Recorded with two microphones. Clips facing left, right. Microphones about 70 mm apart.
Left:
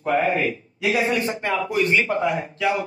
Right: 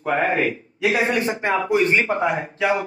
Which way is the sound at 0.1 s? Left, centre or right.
Right.